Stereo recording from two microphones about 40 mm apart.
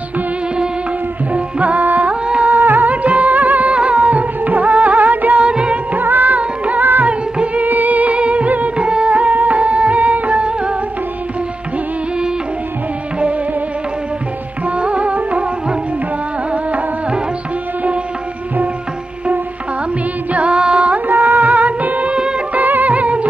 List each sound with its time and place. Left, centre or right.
1.3 s music: right
2.2 s a sound: right
2.5 s music: right
3.7 s music: right
5.4 s music: right
5.9 s music: right
6.3 s music of bollywood: right
6.8 s music: right
7.1 s music: right
7.6 s music: right
8.7 s music: right
14.8 s music: right
20.3 s music: right
21.1 s music: right